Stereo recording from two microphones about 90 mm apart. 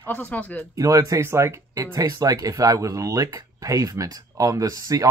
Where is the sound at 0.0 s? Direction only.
20° left (ahead or behind).